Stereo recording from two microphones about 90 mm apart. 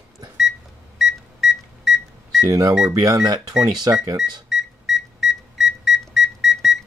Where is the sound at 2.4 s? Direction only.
45° right (ahead or behind).